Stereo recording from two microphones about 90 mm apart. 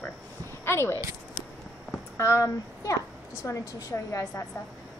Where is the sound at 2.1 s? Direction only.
30° left (ahead or behind).